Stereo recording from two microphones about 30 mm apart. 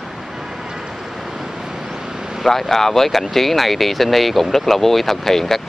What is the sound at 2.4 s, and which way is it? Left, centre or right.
Speech, centre.